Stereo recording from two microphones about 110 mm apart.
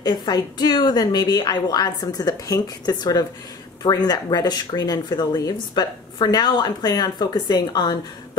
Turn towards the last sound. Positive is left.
turn(degrees=40)  # may be behind; listen again after turning